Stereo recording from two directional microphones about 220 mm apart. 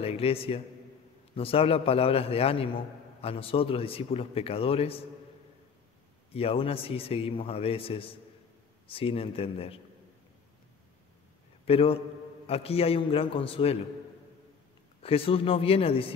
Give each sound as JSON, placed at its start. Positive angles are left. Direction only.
{"t": 0.0, "sound": "a man's voice", "side_deg": 25}
{"t": 6.3, "sound": "a man's voice", "side_deg": 25}
{"t": 11.6, "sound": "a man's voice", "side_deg": 25}
{"t": 15.0, "sound": "a man's voice", "side_deg": 25}